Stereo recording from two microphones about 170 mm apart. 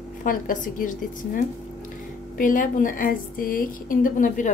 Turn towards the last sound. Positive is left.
turn(degrees=50)  # may be behind; listen again after turning